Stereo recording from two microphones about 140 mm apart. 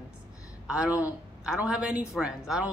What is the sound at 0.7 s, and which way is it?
A woman's voice, 5° right (ahead or behind).